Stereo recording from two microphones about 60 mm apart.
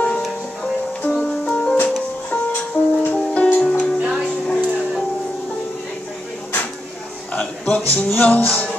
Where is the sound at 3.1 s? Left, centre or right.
Left.